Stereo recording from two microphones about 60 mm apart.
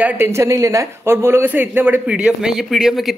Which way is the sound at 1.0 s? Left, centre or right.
Right.